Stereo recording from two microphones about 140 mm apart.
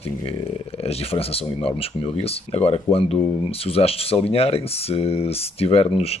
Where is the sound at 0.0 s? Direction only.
40° left (ahead or behind).